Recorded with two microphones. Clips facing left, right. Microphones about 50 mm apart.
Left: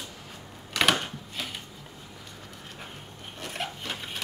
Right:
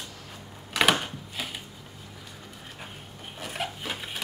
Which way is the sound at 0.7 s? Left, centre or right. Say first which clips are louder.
Right 1 dB; centre.